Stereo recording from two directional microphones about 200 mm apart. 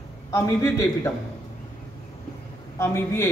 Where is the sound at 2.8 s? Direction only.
10° left (ahead or behind).